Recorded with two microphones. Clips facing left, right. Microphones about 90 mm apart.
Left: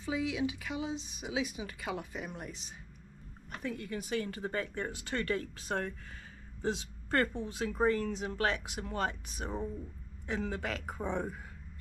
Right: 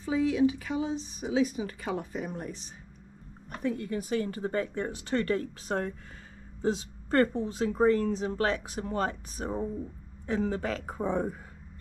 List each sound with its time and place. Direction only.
0.0 s speech: 40° right (ahead or behind)
3.6 s a woman's voice: 30° right (ahead or behind)